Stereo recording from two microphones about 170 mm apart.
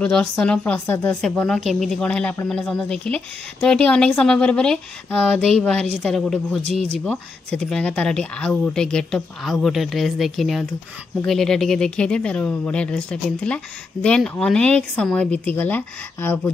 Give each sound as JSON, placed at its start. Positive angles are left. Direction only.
{"t": 0.0, "sound": "speech", "side_deg": 5}